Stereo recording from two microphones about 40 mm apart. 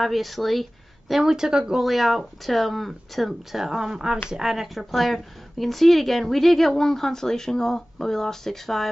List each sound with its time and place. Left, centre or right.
0.0 s speech: centre
1.3 s speech: centre
1.8 s speech: centre
3.6 s speech: centre